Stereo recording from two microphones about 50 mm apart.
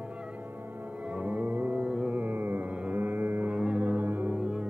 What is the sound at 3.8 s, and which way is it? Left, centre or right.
Music, right.